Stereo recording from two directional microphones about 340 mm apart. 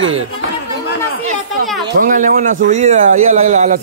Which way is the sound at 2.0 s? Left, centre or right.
Right.